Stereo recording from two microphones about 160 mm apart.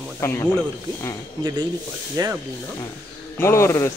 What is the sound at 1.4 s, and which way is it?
Speech, 25° right (ahead or behind).